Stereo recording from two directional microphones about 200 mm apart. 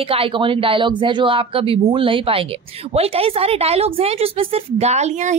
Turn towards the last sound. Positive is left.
turn(degrees=-35)  # may be behind; listen again after turning